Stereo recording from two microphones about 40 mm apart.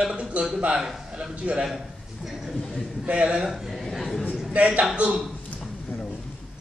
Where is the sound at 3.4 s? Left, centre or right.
Centre.